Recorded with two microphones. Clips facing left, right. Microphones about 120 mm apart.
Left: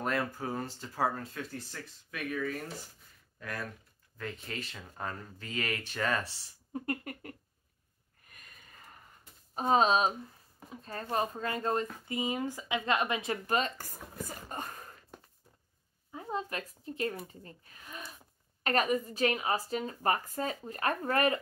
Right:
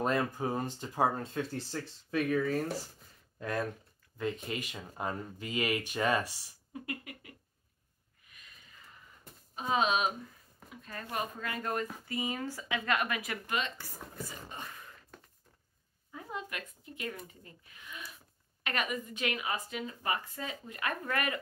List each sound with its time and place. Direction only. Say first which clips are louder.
0.0 s speech: right 2 dB; 20° right (ahead or behind)
6.7 s a sound: left 6 dB; 45° left (ahead or behind)
9.6 s speech: left 4 dB; 40° left (ahead or behind)
16.1 s speech: left 5 dB; 30° left (ahead or behind)